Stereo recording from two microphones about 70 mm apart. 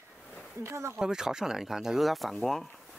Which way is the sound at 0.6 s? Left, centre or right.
Right.